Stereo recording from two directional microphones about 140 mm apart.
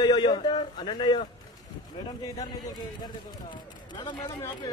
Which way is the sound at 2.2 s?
30° left (ahead or behind).